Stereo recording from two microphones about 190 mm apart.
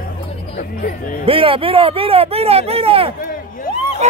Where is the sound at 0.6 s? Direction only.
50° left (ahead or behind).